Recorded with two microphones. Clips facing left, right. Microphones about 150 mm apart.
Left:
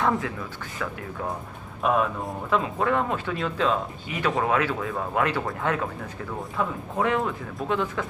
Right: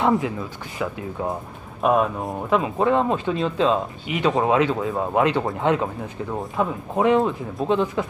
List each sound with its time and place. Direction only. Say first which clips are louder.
0.0 s speech: right 5 dB; 20° right (ahead or behind)
1.8 s speech: right 4 dB; 20° right (ahead or behind)